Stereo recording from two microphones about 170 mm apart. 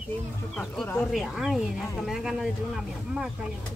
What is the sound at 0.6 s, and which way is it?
Speech, 5° left (ahead or behind).